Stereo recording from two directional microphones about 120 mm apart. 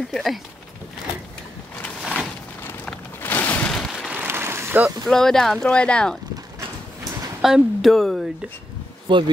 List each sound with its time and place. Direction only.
0.1 s speech: centre (ahead or behind)
2.8 s a sound: 15° left (ahead or behind)
3.7 s rain: 5° left (ahead or behind)
4.1 s a sound: 15° right (ahead or behind)
5.0 s speech: 5° left (ahead or behind)
7.4 s speech: centre (ahead or behind)
9.1 s speech: 40° right (ahead or behind)